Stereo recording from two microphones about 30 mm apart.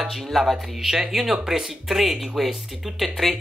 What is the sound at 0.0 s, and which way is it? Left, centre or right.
Speech, centre.